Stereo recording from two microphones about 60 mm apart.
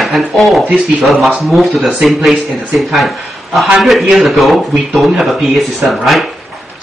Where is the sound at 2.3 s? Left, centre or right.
Centre.